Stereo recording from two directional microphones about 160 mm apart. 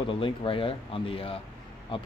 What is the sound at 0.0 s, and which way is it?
Speech, 35° left (ahead or behind).